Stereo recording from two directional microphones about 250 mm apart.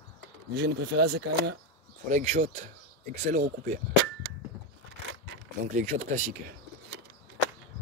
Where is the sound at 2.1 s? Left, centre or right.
Right.